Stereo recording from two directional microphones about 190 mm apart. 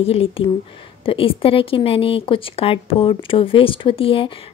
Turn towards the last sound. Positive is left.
turn(degrees=30)  # may be behind; listen again after turning